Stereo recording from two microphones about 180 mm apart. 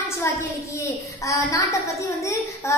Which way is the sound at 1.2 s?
15° left (ahead or behind).